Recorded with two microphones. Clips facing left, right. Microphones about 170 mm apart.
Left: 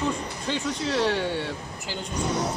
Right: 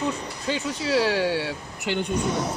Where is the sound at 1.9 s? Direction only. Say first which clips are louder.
Right 9 dB; 70° right (ahead or behind).